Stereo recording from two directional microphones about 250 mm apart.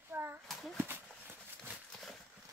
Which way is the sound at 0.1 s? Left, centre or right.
Centre.